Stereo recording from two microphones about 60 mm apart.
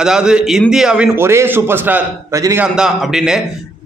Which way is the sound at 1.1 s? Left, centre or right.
Right.